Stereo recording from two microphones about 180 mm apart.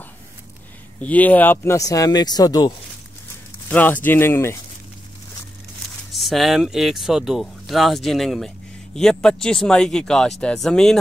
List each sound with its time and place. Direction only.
1.0 s speech: 10° left (ahead or behind)
3.6 s speech: 10° left (ahead or behind)
6.1 s speech: centre (ahead or behind)